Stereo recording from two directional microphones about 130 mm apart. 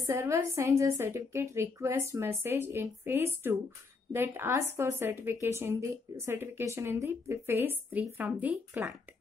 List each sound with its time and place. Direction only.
0.0 s a woman's voice: 20° right (ahead or behind)